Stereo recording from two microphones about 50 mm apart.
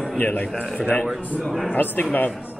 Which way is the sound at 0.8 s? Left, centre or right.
Left.